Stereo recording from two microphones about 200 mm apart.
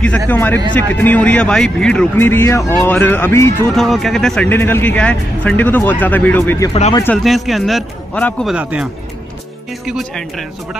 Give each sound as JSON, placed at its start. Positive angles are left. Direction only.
{"t": 0.3, "sound": "speech", "side_deg": 10}
{"t": 3.7, "sound": "speech", "side_deg": 0}
{"t": 6.7, "sound": "speech", "side_deg": 30}
{"t": 7.2, "sound": "a man's voice", "side_deg": 0}
{"t": 9.8, "sound": "a man's voice", "side_deg": 0}